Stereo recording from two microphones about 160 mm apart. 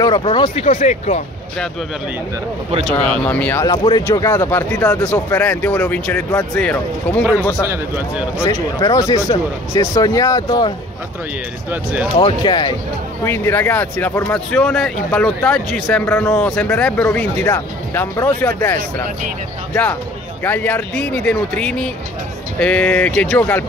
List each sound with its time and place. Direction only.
0.0 s speech: 35° left (ahead or behind)
2.9 s speech: 10° left (ahead or behind)
4.5 s speech: 10° left (ahead or behind)
8.5 s speech: 20° left (ahead or behind)
11.7 s speech: 10° right (ahead or behind)
12.2 s speech: 30° left (ahead or behind)
13.2 s speech: 15° left (ahead or behind)